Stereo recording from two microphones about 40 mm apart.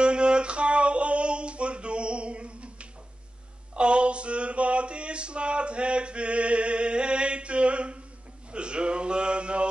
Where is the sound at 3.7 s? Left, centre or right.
Right.